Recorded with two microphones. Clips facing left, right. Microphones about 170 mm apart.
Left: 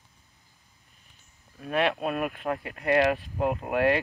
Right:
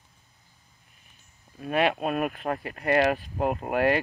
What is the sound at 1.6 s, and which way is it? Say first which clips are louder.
Speech: right 1 dB; 5° right (ahead or behind).